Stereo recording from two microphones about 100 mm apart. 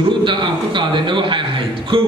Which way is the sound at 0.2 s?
55° right (ahead or behind).